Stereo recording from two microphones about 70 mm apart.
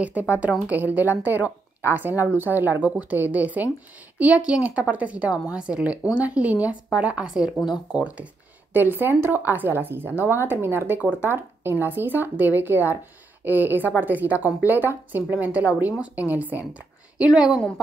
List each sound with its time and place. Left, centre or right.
0.0 s a woman's voice: right
8.7 s speech: right
17.2 s a woman's voice: centre